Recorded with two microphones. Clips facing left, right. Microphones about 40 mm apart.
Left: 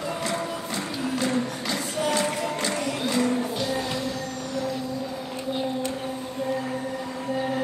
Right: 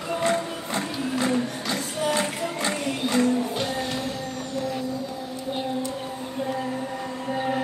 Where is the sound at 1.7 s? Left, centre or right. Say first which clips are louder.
Even; centre.